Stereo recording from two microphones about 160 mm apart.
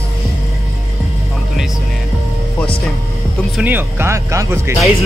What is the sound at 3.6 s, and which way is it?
Speech, 10° right (ahead or behind).